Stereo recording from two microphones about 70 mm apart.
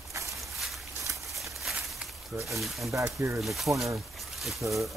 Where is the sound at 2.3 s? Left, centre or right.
Centre.